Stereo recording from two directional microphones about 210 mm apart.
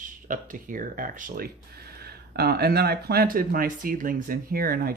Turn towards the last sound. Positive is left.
turn(degrees=-45)  # may be behind; listen again after turning